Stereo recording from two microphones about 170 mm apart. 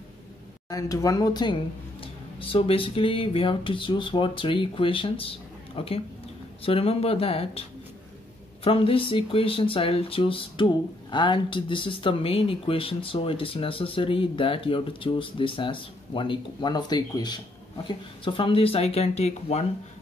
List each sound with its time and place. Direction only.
0.7 s speech: 20° left (ahead or behind); by 7.6 s 35° left (ahead or behind)
8.6 s speech: 35° left (ahead or behind)